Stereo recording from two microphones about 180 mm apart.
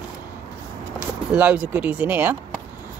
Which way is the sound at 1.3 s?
10° right (ahead or behind).